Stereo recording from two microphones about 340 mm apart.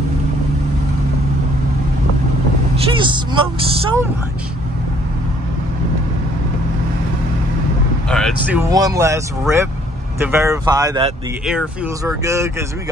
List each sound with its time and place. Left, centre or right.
2.7 s speech: centre
8.1 s speech: centre
11.4 s speech: centre